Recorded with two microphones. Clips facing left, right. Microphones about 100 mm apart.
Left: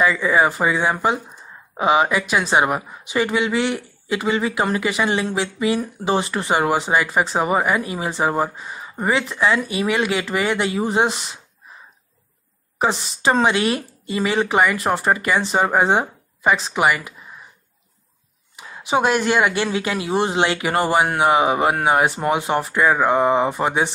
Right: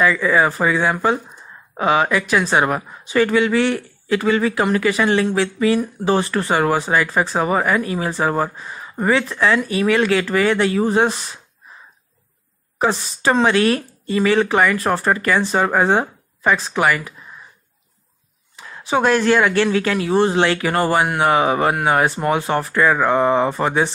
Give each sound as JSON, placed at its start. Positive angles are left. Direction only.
{"t": 0.0, "sound": "speech", "side_deg": 20}
{"t": 12.7, "sound": "speech", "side_deg": 20}
{"t": 18.6, "sound": "speech", "side_deg": 15}